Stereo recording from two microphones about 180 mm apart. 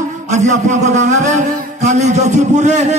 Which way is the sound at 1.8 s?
40° right (ahead or behind).